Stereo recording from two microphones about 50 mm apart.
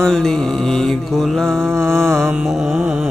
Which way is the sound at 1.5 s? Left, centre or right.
Right.